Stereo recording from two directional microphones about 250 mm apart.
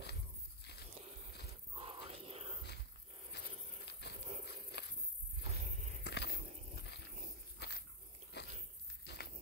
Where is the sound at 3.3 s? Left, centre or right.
Left.